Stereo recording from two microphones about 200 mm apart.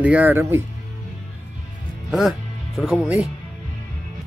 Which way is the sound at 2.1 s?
Centre (ahead or behind).